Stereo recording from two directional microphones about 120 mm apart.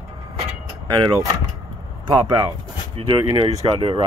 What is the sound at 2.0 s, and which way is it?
Speech, 40° right (ahead or behind).